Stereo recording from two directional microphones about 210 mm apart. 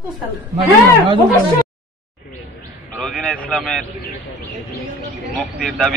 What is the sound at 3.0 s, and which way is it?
Speech, 5° left (ahead or behind).